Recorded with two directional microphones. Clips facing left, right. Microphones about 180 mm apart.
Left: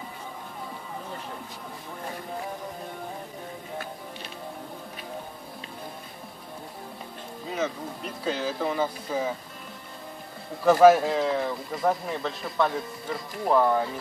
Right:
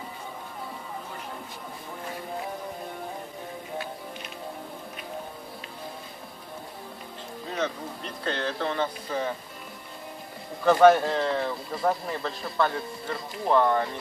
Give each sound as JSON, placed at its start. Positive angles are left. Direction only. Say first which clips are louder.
{"t": 7.4, "sound": "speech", "louder": "left 1 dB", "side_deg": 5}
{"t": 10.6, "sound": "speech", "louder": "left 1 dB", "side_deg": 5}